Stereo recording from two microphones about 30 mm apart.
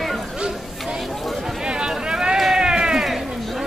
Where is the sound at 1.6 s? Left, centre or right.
Right.